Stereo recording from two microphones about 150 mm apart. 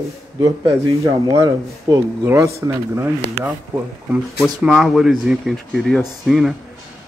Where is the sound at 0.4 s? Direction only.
20° right (ahead or behind).